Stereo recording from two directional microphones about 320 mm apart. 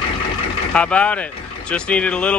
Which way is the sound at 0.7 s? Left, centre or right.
Centre.